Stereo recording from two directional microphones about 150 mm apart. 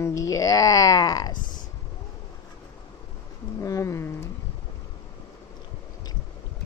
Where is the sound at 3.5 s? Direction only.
20° left (ahead or behind).